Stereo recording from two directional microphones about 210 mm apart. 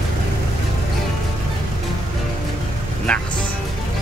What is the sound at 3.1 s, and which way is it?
Speech, 5° left (ahead or behind).